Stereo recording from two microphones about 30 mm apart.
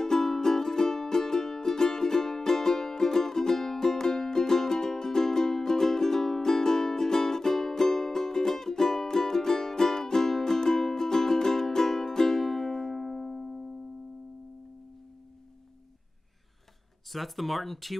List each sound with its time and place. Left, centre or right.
0.0 s music: centre
17.1 s speech: centre